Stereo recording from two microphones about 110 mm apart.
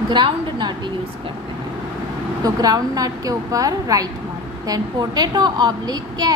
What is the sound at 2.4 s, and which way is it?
A woman's voice, 35° right (ahead or behind).